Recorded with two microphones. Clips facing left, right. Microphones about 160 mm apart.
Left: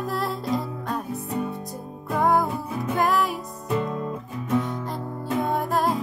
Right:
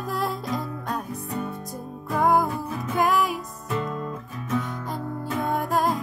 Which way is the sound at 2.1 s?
Centre (ahead or behind).